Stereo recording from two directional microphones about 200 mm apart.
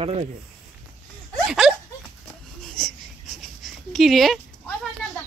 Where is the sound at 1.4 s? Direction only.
Centre (ahead or behind).